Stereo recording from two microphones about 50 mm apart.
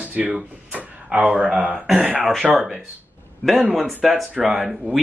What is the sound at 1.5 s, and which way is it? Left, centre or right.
Speech, right.